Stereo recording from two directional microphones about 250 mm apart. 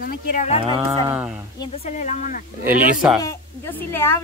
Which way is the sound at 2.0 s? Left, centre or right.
Left.